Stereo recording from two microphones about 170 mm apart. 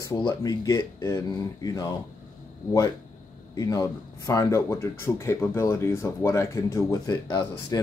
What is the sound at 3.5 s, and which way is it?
Speech, 20° left (ahead or behind).